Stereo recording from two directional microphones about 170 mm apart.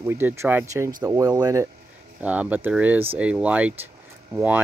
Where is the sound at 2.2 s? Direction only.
10° right (ahead or behind).